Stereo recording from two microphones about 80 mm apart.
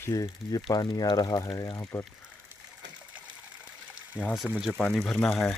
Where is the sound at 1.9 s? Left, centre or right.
Left.